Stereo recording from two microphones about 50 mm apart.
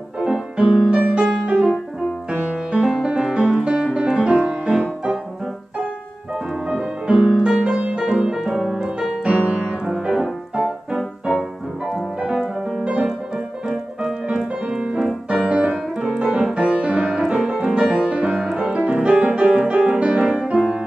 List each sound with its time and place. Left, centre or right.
0.2 s music: centre
2.8 s music: centre
6.7 s music: centre
9.7 s music: centre
11.0 s music: centre
12.7 s music: centre
14.2 s piano: centre
16.5 s music: right
18.8 s piano: right
20.3 s music: centre